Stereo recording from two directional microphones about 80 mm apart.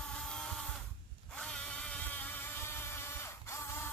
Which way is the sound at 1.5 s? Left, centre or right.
Centre.